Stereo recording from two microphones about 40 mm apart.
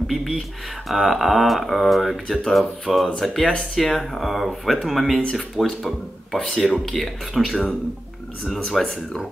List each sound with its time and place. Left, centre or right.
0.1 s speech: centre
8.8 s speech: centre